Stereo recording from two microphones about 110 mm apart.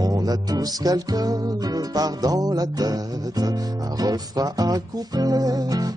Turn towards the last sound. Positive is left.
turn(degrees=-35)  # may be behind; listen again after turning